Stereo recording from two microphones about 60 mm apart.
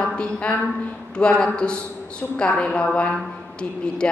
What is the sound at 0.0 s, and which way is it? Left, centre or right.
A woman's voice, centre.